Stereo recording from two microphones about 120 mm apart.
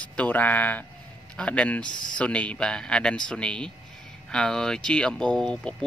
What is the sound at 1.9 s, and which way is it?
Speech, 40° left (ahead or behind).